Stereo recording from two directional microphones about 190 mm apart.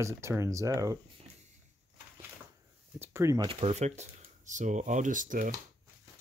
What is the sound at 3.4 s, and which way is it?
Speech, 35° right (ahead or behind).